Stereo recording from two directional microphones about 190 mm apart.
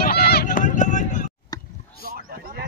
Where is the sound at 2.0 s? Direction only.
50° right (ahead or behind).